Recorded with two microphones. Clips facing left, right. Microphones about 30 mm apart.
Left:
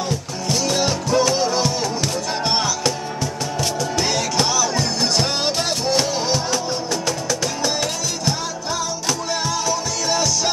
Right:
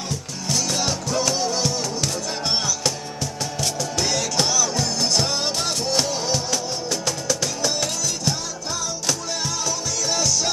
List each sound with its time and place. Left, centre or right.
0.5 s music: centre
3.9 s music: left
6.3 s music: centre
9.7 s music: centre